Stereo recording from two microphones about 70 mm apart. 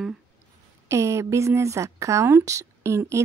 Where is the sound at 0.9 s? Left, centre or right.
Right.